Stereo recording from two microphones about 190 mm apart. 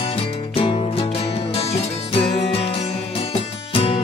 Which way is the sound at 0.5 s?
30° left (ahead or behind).